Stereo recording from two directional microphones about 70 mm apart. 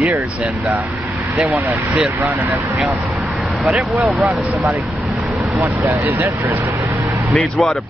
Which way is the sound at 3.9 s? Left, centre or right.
Centre.